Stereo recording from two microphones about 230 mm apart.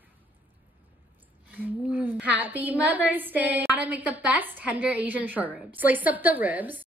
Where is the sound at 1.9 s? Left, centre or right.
Centre.